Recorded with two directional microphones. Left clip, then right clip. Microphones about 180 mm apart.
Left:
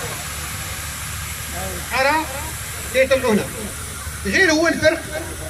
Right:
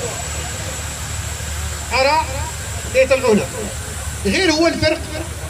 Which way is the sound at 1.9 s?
10° right (ahead or behind).